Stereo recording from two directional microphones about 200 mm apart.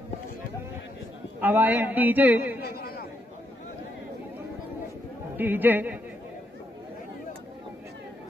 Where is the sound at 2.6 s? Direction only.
50° left (ahead or behind).